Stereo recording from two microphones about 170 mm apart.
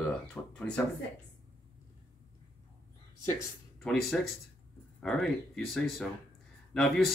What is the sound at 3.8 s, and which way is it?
Speech, centre (ahead or behind).